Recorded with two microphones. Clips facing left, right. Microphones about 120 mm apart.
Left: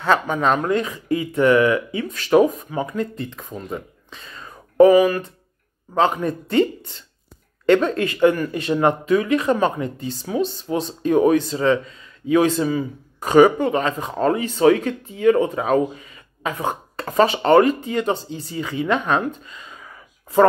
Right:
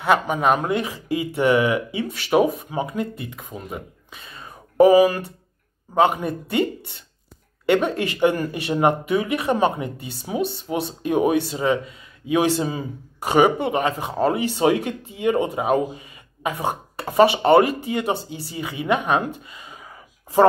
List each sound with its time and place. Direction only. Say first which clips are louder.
0.0 s speech: even; 15° right (ahead or behind)
3.0 s speech: left 2 dB; 10° right (ahead or behind)
4.2 s whispering: even; 25° right (ahead or behind)
5.9 s speech: even; 25° right (ahead or behind)
7.6 s speech: left 3 dB; 20° right (ahead or behind)
12.5 s a man's voice: left 4 dB; 30° right (ahead or behind); by 14.4 s 10° right (ahead or behind)
14.5 s speech: left 4 dB; 20° right (ahead or behind)
19.5 s gasp: left 1 dB; 15° right (ahead or behind)